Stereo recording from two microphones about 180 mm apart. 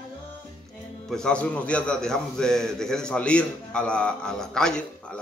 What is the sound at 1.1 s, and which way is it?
A man's voice, 5° left (ahead or behind).